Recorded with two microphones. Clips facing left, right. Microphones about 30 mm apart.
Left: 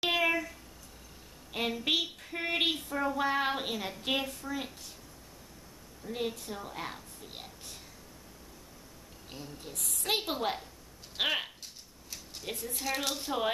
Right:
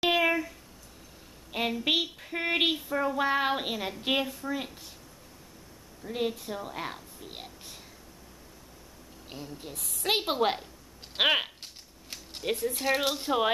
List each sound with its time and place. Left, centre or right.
0.0 s a sound: centre
1.5 s speech: centre
6.0 s a woman's voice: centre
9.3 s speech: centre
9.8 s a woman's voice: centre
10.0 s a woman's voice: centre
11.1 s a sound: right
13.1 s a woman's voice: centre